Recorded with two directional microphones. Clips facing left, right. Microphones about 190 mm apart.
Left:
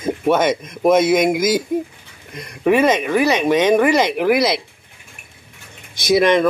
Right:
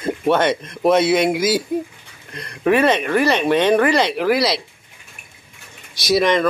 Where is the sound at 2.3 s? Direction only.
10° left (ahead or behind).